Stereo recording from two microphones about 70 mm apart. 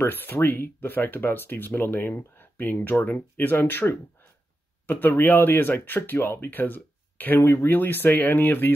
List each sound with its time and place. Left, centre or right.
0.0 s speech: left